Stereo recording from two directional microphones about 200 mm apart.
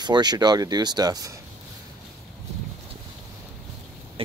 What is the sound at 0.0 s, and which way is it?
Speech, 20° right (ahead or behind).